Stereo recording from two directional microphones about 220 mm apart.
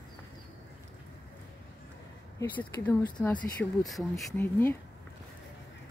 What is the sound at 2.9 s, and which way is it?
Speech, 10° left (ahead or behind).